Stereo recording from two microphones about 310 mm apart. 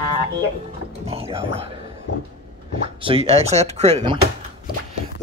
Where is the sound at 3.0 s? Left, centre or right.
Centre.